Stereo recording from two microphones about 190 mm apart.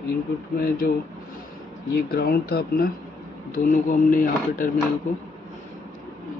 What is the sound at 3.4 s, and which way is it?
Speech, 45° left (ahead or behind).